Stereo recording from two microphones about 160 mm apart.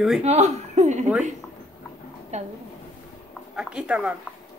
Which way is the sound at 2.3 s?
45° right (ahead or behind).